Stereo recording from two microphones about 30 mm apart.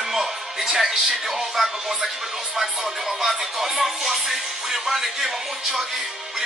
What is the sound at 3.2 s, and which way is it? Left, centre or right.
Music, centre.